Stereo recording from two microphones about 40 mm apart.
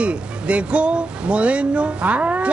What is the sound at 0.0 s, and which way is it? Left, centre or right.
Speech, right.